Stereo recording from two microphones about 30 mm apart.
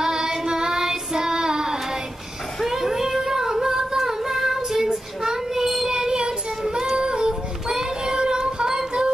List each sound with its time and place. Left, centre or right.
0.0 s child singing: right
2.6 s child singing: centre
5.9 s child singing: right